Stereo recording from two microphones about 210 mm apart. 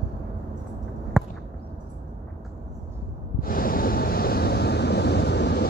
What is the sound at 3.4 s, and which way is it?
Waves, 45° left (ahead or behind).